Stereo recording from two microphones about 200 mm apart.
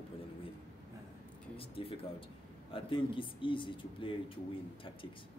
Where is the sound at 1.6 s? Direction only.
25° left (ahead or behind).